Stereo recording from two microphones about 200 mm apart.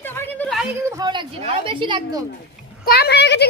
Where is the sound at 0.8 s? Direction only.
20° right (ahead or behind).